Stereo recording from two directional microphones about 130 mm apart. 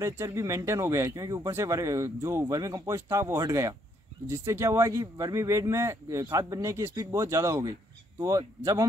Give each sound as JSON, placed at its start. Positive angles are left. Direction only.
{"t": 0.0, "sound": "speech", "side_deg": -25}